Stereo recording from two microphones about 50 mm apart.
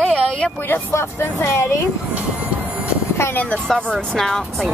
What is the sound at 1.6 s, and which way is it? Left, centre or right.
Speech, left.